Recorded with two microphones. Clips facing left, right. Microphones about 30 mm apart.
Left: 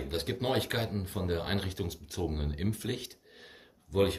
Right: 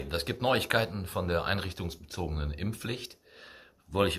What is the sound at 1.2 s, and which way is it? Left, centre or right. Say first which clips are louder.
Speech: right 3 dB; right.